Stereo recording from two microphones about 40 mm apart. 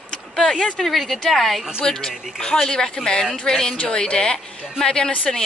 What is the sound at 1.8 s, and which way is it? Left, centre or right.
A woman's voice, centre.